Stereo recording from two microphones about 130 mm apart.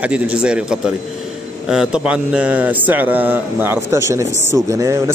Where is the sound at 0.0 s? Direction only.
10° right (ahead or behind).